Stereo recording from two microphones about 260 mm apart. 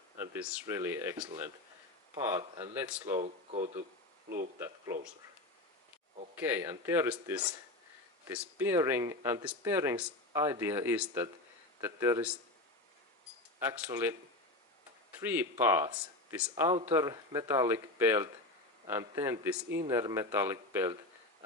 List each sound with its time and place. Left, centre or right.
0.2 s speech: centre
3.2 s speech: right
4.6 s speech: centre
6.3 s speech: centre
13.6 s speech: centre
15.1 s speech: centre